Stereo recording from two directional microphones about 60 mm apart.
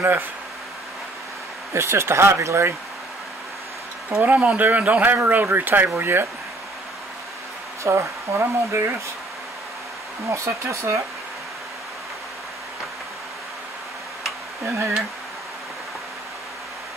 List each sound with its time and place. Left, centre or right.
1.7 s speech: right
4.2 s speech: right
7.8 s speech: right
10.2 s speech: right
14.6 s speech: right